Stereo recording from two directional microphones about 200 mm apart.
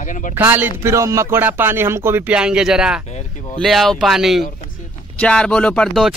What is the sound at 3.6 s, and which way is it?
Speech, centre (ahead or behind).